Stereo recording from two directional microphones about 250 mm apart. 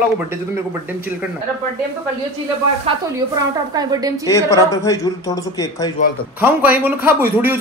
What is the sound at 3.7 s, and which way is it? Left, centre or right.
Speech, centre.